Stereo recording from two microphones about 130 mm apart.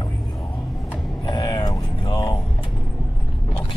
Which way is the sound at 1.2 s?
30° left (ahead or behind).